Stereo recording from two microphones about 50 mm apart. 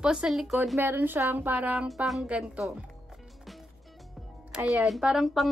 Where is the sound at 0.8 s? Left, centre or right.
Right.